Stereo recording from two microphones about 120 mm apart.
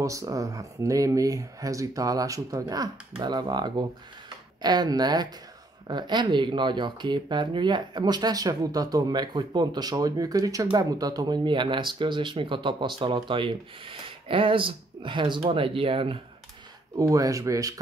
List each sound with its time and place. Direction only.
0.0 s speech: 25° right (ahead or behind); by 16.2 s 50° right (ahead or behind)
16.9 s speech: 30° right (ahead or behind)